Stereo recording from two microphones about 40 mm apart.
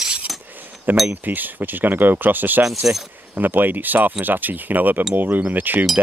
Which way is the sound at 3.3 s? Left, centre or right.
Right.